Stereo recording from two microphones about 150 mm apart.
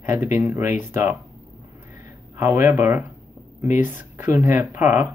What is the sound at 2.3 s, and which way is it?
Speech, 15° right (ahead or behind).